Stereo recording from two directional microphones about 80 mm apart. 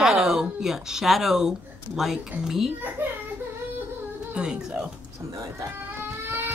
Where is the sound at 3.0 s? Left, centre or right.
Right.